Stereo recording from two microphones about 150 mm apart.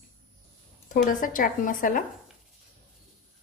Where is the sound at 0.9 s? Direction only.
60° left (ahead or behind).